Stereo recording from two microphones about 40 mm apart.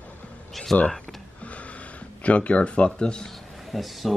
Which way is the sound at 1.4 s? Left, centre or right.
Left.